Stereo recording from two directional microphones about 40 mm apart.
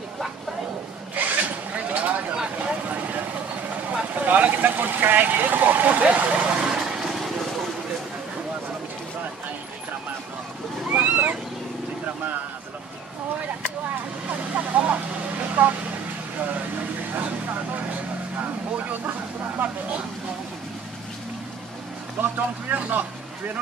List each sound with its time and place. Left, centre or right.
1.1 s a sound: right
2.7 s vehicle: right
4.1 s speech: right
6.0 s speech: right
6.6 s vehicle: centre
10.9 s a sound: right
14.3 s vehicle: right
17.1 s vehicle: right
22.2 s vehicle: right
22.7 s speech: right